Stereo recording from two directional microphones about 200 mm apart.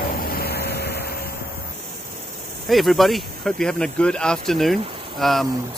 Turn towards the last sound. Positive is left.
turn(degrees=0)  # may be behind; listen again after turning